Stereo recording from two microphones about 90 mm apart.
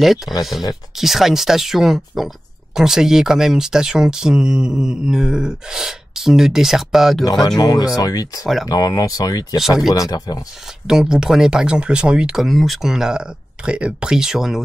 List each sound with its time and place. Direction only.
0.0 s speech: centre (ahead or behind)
7.4 s speech: 45° left (ahead or behind)
9.6 s speech: 5° right (ahead or behind)
9.9 s speech: 45° left (ahead or behind)
10.9 s speech: 5° right (ahead or behind)